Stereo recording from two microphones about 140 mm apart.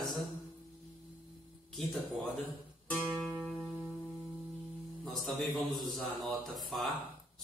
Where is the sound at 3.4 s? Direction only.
Centre (ahead or behind).